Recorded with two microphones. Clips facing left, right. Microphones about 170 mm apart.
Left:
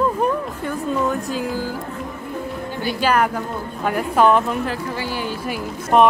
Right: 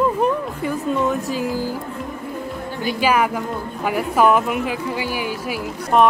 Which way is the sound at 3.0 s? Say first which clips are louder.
Even; 10° right (ahead or behind).